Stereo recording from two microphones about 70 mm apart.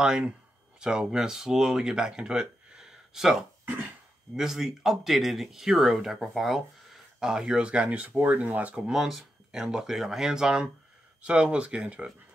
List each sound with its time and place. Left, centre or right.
0.0 s speech: centre
8.9 s speech: centre